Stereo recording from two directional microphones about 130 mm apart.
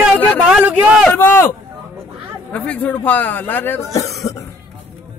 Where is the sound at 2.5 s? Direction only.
10° left (ahead or behind).